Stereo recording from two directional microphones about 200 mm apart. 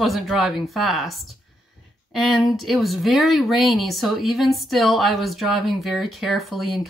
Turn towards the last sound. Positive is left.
turn(degrees=0)  # may be behind; listen again after turning